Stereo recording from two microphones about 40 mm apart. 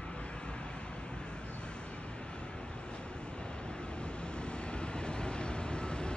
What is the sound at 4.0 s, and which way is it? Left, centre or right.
Vehicle, left.